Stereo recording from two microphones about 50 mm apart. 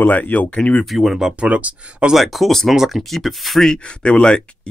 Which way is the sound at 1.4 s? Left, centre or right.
Right.